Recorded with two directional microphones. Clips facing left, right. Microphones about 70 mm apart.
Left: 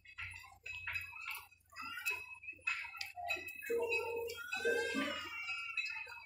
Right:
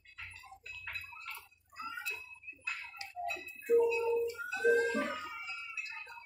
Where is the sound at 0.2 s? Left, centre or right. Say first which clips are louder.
Right 1 dB; centre.